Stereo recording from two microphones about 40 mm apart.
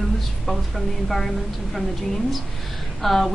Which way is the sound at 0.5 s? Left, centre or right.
Centre.